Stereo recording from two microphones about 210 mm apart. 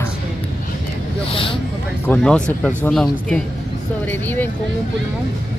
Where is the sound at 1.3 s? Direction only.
25° left (ahead or behind).